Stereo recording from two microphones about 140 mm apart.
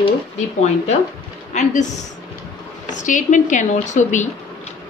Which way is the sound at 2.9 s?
65° left (ahead or behind).